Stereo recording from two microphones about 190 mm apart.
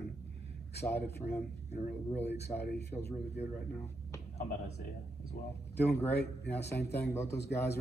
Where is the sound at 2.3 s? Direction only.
60° left (ahead or behind).